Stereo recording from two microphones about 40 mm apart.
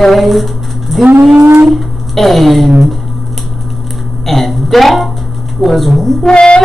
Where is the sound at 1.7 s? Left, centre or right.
Centre.